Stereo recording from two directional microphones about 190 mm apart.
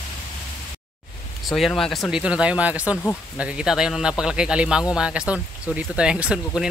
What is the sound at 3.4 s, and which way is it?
Speech, 5° right (ahead or behind).